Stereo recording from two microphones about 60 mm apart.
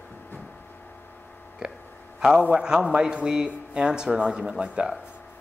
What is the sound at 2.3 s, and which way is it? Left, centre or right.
Speech, centre.